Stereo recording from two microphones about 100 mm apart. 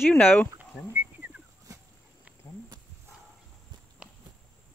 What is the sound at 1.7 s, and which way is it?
Dog, 35° right (ahead or behind).